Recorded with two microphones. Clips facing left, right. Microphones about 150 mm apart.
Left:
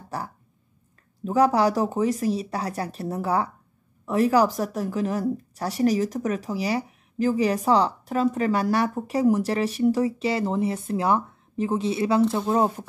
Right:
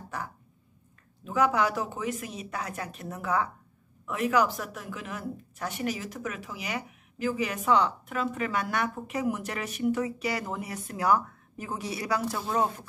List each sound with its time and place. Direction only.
0.1 s a woman's voice: 35° left (ahead or behind)